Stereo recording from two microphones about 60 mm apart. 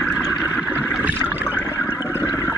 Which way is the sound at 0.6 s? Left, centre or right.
Right.